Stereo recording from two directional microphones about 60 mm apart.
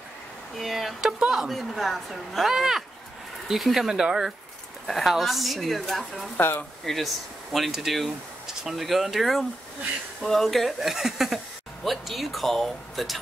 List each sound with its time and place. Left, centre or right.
0.6 s speech: centre
6.3 s speech: left
6.8 s speech: centre